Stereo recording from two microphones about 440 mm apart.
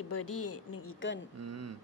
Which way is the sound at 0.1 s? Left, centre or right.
Left.